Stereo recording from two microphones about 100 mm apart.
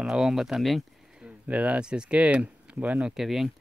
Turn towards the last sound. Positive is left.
turn(degrees=0)  # may be behind; listen again after turning